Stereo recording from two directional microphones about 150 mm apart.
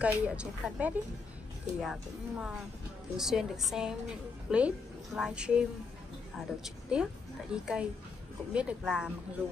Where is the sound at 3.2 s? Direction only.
Centre (ahead or behind).